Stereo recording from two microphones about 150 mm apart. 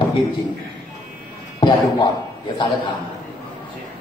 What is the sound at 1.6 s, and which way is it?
Speech, 30° left (ahead or behind).